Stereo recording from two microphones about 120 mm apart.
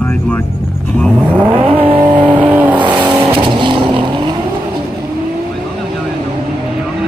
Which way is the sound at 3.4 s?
40° right (ahead or behind).